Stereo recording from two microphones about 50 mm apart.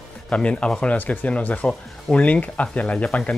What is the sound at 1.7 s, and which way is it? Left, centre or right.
Speech, centre.